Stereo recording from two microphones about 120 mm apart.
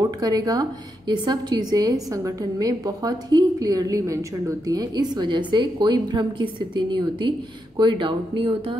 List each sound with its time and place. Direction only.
0.0 s a woman's voice: 30° right (ahead or behind)